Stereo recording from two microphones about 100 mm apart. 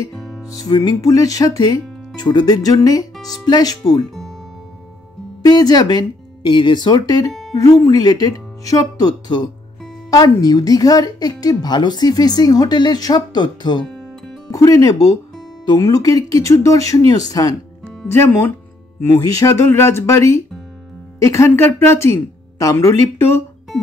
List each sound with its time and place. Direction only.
0.1 s music: centre (ahead or behind)
0.5 s speech: 35° left (ahead or behind)
5.4 s speech: 40° left (ahead or behind)
13.8 s music: 5° left (ahead or behind)
14.5 s speech: 35° left (ahead or behind)
17.8 s speech: 25° left (ahead or behind)